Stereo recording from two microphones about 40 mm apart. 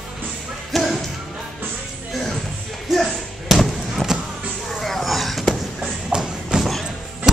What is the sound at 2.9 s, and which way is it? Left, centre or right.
Basketball bounce, centre.